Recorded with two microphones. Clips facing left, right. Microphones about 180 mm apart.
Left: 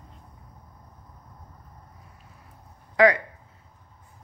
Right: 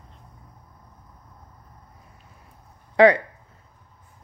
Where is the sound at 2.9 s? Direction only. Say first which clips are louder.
Right 4 dB; 30° right (ahead or behind).